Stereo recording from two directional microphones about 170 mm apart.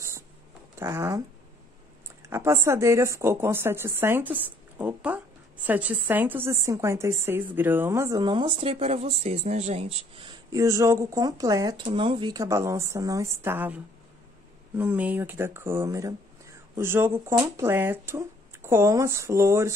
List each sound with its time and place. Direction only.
0.7 s speech: 15° right (ahead or behind)
2.2 s speech: 15° right (ahead or behind); by 10.3 s 35° right (ahead or behind)
10.5 s speech: 15° right (ahead or behind)
14.8 s speech: 10° right (ahead or behind)